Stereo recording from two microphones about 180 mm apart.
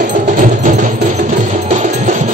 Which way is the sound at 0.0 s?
45° right (ahead or behind).